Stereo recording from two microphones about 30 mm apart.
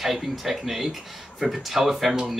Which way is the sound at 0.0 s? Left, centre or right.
Centre.